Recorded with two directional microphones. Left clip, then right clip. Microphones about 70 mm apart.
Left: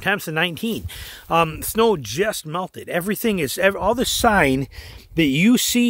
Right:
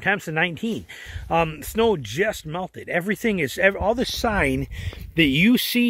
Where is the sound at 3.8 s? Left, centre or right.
Left.